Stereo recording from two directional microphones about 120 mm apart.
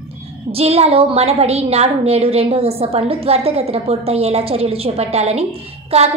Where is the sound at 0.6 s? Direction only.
55° right (ahead or behind).